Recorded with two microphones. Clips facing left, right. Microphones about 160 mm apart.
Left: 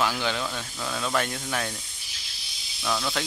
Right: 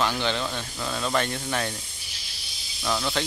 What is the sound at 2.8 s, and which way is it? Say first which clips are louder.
Speech: right 1 dB; 5° right (ahead or behind).